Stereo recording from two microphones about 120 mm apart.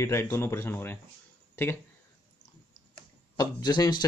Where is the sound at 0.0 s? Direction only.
20° left (ahead or behind).